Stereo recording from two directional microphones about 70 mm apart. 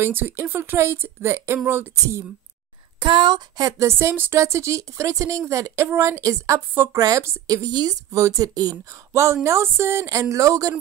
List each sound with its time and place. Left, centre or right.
0.0 s speech: right
3.0 s speech: right
3.7 s a woman's voice: right
6.7 s speech: right
7.0 s a woman's voice: right
7.7 s a woman's voice: right
9.2 s speech: right
10.3 s a woman's voice: right